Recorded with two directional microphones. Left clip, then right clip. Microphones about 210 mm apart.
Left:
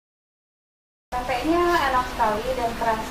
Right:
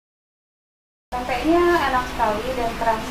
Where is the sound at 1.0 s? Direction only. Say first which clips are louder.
Right 2 dB; centre (ahead or behind).